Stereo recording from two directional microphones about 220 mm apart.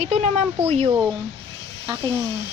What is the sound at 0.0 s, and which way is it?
Speech, 30° right (ahead or behind).